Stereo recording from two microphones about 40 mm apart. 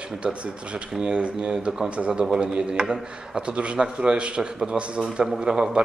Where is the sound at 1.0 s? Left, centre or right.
Right.